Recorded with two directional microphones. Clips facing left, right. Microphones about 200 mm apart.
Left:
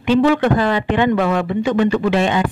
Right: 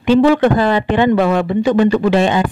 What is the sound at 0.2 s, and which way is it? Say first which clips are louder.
Speech: right 3 dB; 35° right (ahead or behind).